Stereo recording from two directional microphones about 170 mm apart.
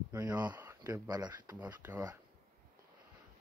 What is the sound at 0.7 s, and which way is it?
Speech, 20° right (ahead or behind).